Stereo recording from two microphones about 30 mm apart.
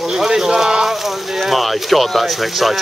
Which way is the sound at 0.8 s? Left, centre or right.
Centre.